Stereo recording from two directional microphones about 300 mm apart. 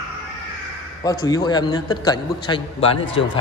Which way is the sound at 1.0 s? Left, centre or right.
Centre.